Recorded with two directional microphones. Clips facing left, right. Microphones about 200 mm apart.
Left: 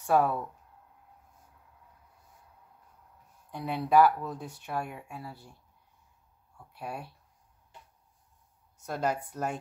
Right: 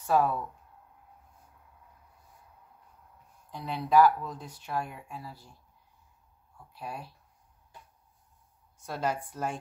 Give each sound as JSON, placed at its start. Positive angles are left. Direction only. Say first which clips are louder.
{"t": 0.0, "sound": "speech", "louder": "left 1 dB", "side_deg": 55}
{"t": 3.5, "sound": "speech", "louder": "even", "side_deg": 55}
{"t": 6.7, "sound": "speech", "louder": "left 1 dB", "side_deg": 60}
{"t": 8.8, "sound": "speech", "louder": "left 1 dB", "side_deg": 45}